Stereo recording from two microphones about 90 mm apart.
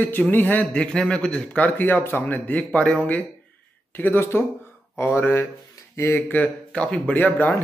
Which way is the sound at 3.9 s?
20° left (ahead or behind).